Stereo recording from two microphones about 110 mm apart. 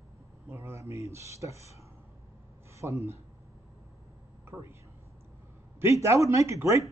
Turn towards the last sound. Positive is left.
turn(degrees=-25)  # may be behind; listen again after turning